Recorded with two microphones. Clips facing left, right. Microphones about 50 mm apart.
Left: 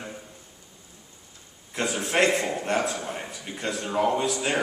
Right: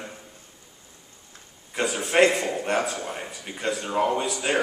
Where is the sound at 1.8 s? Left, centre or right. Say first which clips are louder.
Right 2 dB; centre.